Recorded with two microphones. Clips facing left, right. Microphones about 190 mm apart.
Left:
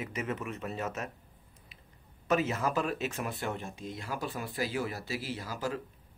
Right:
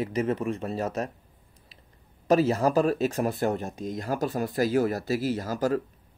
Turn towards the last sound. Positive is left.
turn(degrees=-45)  # may be behind; listen again after turning